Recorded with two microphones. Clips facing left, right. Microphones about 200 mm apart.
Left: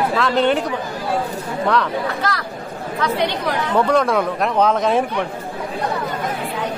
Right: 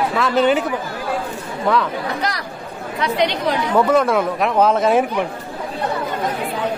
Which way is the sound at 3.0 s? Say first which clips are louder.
Right 2 dB; 20° right (ahead or behind).